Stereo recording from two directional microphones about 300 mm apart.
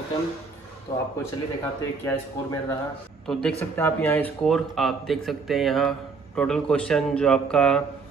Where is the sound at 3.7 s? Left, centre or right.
Centre.